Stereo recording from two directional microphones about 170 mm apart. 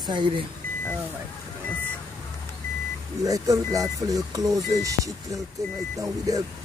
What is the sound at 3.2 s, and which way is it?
Speech, 20° right (ahead or behind).